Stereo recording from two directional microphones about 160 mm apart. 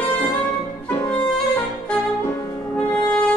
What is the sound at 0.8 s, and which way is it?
Music, 10° left (ahead or behind).